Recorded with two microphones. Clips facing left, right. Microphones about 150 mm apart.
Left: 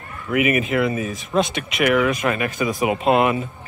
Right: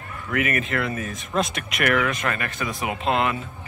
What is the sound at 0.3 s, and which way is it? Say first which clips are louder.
Speech: left 6 dB; 15° left (ahead or behind).